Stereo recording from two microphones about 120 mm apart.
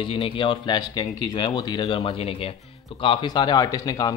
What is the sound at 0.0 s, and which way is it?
Speech, 50° left (ahead or behind).